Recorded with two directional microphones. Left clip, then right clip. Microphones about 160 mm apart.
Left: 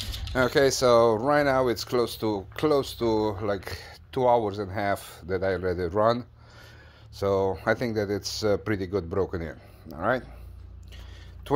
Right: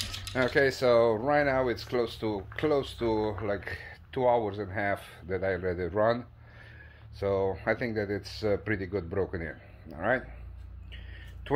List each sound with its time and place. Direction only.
0.3 s speech: 40° left (ahead or behind)